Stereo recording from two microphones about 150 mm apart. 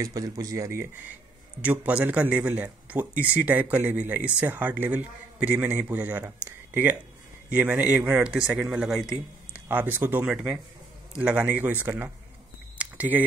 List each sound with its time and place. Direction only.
0.0 s a man's voice: 25° right (ahead or behind); by 9.6 s 5° right (ahead or behind)
9.7 s a man's voice: 15° right (ahead or behind)
12.7 s a sound: 10° right (ahead or behind)